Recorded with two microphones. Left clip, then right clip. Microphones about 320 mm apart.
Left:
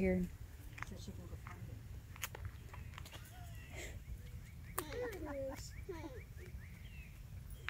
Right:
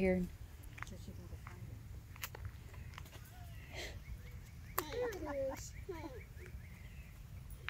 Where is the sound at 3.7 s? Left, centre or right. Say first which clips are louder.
Right 4 dB; centre.